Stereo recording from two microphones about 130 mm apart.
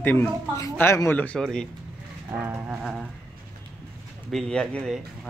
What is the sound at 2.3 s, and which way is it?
Livestock, 15° right (ahead or behind).